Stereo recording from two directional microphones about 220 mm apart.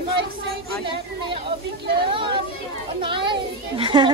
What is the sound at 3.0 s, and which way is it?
Children playing, 20° right (ahead or behind).